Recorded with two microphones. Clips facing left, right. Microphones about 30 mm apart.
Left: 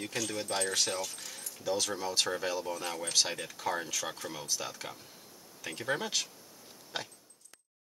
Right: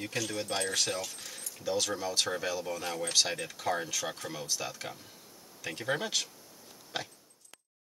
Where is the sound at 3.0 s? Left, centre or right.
Right.